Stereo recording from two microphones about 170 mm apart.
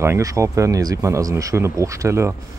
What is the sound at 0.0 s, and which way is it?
Speech, 15° right (ahead or behind).